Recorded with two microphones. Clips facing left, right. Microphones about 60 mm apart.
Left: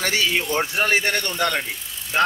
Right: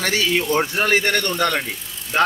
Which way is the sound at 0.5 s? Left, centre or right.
Centre.